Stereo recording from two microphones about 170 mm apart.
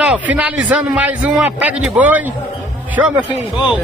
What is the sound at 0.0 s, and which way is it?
A man's voice, 10° right (ahead or behind).